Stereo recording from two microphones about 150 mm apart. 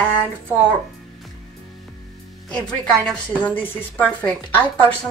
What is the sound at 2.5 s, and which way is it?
Speech, 5° left (ahead or behind).